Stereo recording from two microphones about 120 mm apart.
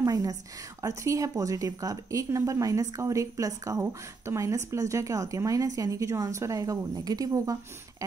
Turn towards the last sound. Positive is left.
turn(degrees=-30)  # may be behind; listen again after turning